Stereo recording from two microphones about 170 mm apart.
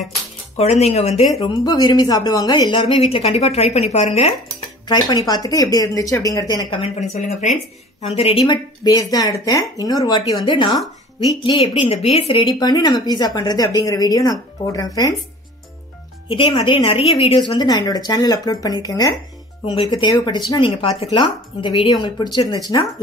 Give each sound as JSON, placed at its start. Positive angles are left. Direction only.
{"t": 0.6, "sound": "a woman's voice", "side_deg": 40}
{"t": 1.4, "sound": "speech", "side_deg": 25}
{"t": 4.8, "sound": "speech", "side_deg": 25}
{"t": 6.8, "sound": "speech", "side_deg": 45}
{"t": 16.3, "sound": "a woman's voice", "side_deg": 30}